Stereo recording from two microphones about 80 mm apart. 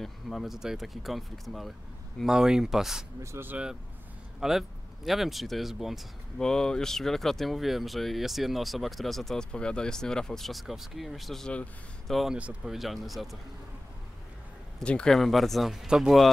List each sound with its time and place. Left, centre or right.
0.0 s speech: centre
3.2 s speech: right
4.4 s speech: centre
6.3 s speech: centre
14.8 s speech: centre